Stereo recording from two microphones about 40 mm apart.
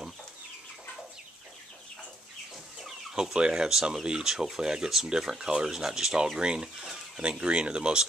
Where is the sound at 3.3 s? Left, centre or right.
Right.